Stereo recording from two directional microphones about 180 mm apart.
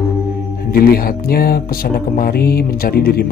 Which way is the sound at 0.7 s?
55° left (ahead or behind).